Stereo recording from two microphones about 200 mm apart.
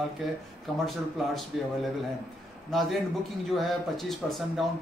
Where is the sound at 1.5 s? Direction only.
Centre (ahead or behind).